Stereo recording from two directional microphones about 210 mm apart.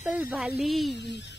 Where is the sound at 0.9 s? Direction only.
55° left (ahead or behind).